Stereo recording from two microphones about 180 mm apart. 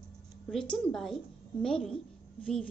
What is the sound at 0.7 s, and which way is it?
A woman's voice, centre (ahead or behind).